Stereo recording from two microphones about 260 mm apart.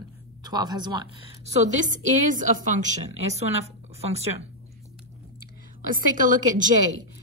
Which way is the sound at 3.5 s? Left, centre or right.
Right.